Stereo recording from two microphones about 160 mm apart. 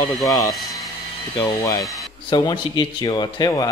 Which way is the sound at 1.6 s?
20° left (ahead or behind).